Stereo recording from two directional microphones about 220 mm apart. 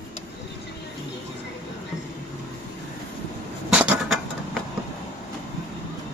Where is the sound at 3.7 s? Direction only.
5° right (ahead or behind).